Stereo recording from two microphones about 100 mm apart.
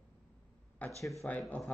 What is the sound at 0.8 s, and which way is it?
Speech, 15° left (ahead or behind).